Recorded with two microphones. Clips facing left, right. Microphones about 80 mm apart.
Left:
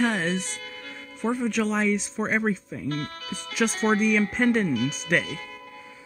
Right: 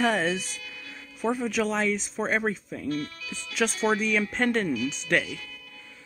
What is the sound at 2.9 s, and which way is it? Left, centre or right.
Speech, left.